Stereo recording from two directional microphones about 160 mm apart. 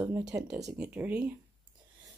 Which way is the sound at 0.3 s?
5° right (ahead or behind).